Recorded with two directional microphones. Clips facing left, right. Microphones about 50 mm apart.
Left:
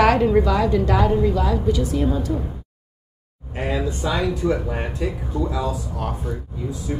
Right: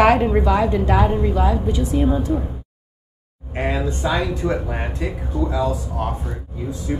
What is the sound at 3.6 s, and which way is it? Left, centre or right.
Speech, right.